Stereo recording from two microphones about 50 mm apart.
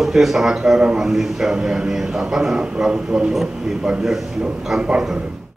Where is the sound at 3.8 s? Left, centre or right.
Centre.